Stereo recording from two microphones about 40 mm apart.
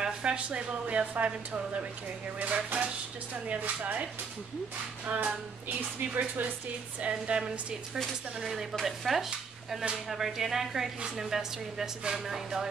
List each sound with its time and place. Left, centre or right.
0.2 s a woman's voice: right
7.0 s a sound: right
8.4 s speech: centre